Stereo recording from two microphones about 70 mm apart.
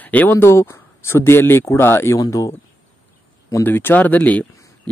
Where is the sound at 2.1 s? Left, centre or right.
Left.